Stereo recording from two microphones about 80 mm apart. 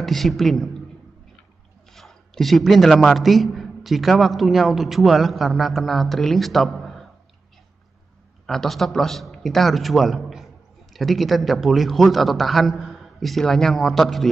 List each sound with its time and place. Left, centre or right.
0.0 s a man's voice: centre
1.9 s a man's voice: centre
8.5 s a man's voice: centre